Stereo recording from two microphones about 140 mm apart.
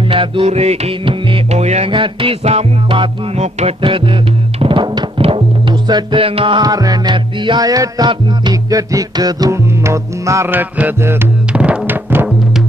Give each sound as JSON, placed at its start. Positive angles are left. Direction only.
{"t": 0.1, "sound": "music", "side_deg": -45}
{"t": 1.9, "sound": "music", "side_deg": -40}